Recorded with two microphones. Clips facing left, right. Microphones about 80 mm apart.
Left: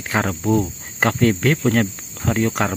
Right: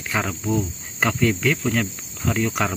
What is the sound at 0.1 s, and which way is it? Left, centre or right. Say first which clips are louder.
Speech: left 4 dB; left.